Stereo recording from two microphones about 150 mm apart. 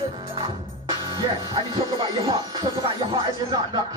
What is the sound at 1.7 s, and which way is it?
Music, 35° right (ahead or behind).